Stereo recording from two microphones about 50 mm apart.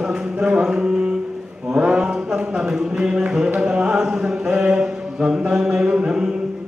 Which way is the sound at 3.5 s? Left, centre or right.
Centre.